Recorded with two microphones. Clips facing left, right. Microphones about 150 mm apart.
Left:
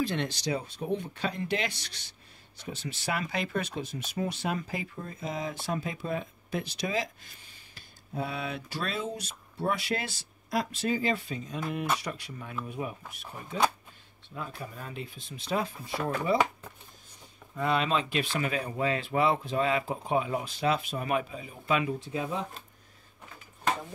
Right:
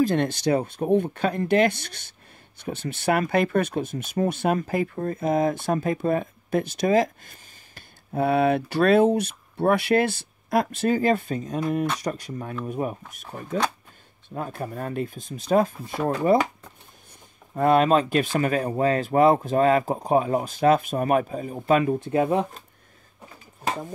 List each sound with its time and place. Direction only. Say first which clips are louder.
0.0 s speech: right 9 dB; 45° right (ahead or behind)
17.6 s speech: right 9 dB; 50° right (ahead or behind)